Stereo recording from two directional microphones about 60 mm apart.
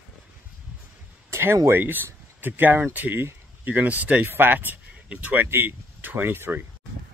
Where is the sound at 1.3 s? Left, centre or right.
Right.